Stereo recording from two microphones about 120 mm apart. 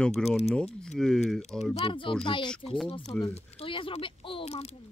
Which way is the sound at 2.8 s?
55° left (ahead or behind).